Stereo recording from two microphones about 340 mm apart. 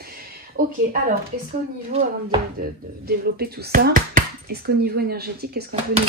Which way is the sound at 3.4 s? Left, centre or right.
Right.